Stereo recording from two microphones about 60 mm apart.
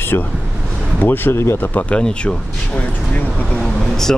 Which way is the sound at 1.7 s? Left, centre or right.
Left.